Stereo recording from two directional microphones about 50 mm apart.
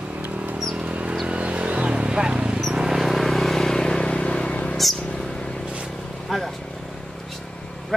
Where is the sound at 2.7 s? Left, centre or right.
Centre; by 4.7 s left.